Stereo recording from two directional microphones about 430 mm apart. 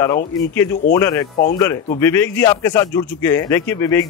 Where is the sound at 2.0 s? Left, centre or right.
Centre.